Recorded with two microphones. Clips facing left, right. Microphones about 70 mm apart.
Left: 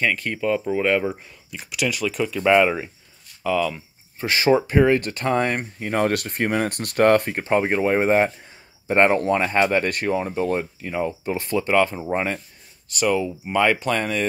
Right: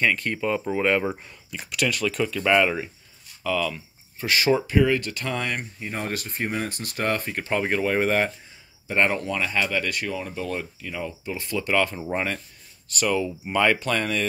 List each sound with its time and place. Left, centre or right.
0.0 s speech: centre
4.2 s speech: left
5.9 s speech: left
7.3 s speech: left